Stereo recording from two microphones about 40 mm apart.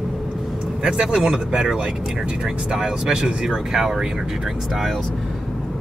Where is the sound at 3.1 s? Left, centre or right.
Right.